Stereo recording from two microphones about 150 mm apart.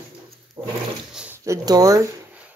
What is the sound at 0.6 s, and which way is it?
Toilet flush, 25° right (ahead or behind).